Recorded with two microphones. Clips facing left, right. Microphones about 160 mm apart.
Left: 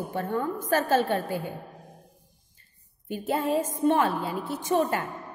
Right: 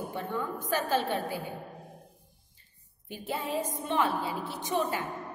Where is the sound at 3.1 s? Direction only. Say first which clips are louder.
Left 7 dB; 45° left (ahead or behind).